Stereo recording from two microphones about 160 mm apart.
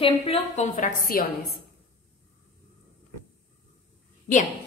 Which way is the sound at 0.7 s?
60° left (ahead or behind).